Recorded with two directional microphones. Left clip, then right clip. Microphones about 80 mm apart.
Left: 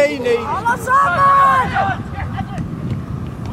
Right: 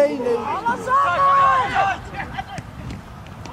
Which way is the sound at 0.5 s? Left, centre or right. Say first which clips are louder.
Left 4 dB; left.